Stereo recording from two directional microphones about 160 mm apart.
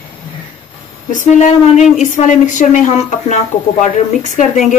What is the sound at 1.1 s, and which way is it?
A woman's voice, 50° left (ahead or behind).